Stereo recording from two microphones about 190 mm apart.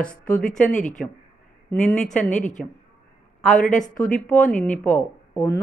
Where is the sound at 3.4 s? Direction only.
5° left (ahead or behind).